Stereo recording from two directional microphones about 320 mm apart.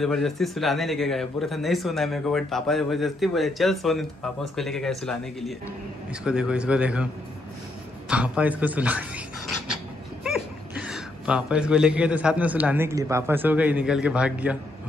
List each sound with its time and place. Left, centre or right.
0.0 s speech: centre
8.1 s speech: centre
10.8 s speech: centre